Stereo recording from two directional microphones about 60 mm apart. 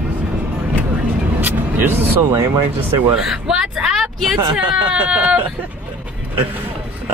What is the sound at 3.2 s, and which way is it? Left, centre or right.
Speech, centre.